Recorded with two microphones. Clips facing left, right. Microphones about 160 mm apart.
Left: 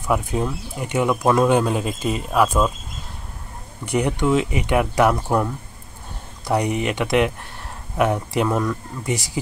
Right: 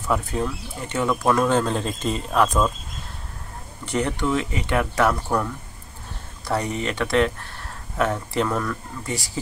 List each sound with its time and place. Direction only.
0.0 s speech: 15° left (ahead or behind)
3.8 s speech: 15° left (ahead or behind)